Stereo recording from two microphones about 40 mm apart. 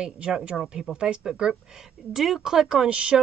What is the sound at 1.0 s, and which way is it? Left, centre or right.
Speech, right.